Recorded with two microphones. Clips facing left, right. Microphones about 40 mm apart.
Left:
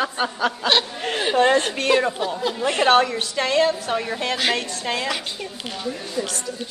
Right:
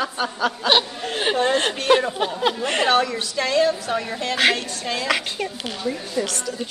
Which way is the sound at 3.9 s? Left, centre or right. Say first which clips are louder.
Left 1 dB; centre.